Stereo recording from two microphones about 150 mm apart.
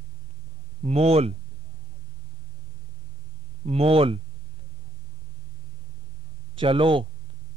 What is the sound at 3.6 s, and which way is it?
Speech, 45° right (ahead or behind).